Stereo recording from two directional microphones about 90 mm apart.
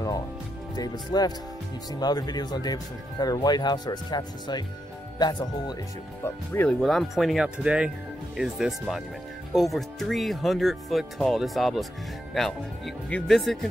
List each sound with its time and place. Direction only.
0.7 s speech: 45° left (ahead or behind)
6.2 s speech: 25° left (ahead or behind)
6.7 s speech: 5° left (ahead or behind)
7.4 s speech: 10° right (ahead or behind)